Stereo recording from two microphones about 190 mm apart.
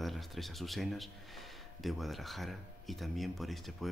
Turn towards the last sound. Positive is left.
turn(degrees=0)  # may be behind; listen again after turning